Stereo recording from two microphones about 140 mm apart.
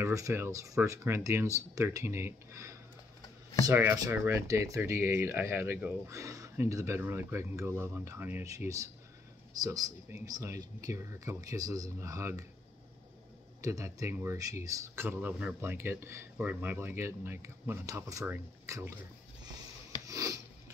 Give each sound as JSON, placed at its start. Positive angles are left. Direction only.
{"t": 0.0, "sound": "speech", "side_deg": -20}
{"t": 13.6, "sound": "speech", "side_deg": -25}
{"t": 20.1, "sound": "a sound", "side_deg": -25}